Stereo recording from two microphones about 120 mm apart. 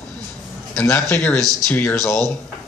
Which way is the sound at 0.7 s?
20° left (ahead or behind).